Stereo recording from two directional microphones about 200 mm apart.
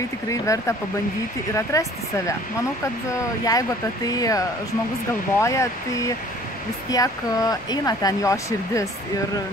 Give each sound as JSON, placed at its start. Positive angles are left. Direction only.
{"t": 0.3, "sound": "speech", "side_deg": 15}
{"t": 3.4, "sound": "speech", "side_deg": 20}